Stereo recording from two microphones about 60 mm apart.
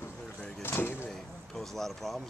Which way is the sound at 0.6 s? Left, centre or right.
Left.